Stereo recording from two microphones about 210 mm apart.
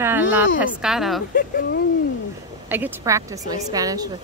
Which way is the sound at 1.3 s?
45° left (ahead or behind).